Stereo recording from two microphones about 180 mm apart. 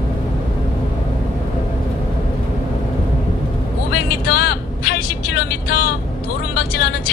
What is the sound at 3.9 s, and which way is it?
Vehicle, 60° left (ahead or behind).